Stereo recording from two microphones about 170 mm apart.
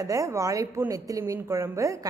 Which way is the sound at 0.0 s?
20° right (ahead or behind).